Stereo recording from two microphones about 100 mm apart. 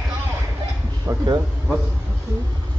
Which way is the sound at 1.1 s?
30° right (ahead or behind).